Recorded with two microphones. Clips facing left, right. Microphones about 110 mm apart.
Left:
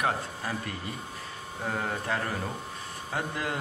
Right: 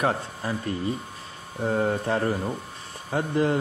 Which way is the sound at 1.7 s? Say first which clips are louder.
Right 7 dB; 40° right (ahead or behind).